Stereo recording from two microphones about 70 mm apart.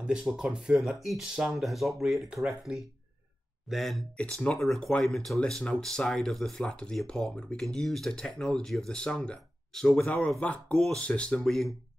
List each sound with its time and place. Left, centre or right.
0.2 s speech: centre
0.5 s speech: centre
10.0 s speech: left
11.4 s speech: centre